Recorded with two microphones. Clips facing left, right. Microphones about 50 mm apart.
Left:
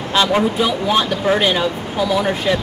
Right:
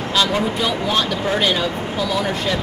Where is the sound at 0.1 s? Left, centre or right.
Left.